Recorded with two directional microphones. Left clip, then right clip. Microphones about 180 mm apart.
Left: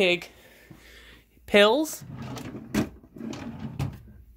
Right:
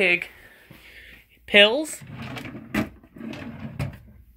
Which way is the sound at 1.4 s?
20° left (ahead or behind).